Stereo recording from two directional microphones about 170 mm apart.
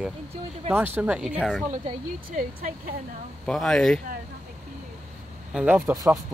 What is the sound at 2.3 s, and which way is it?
Speech, 50° right (ahead or behind).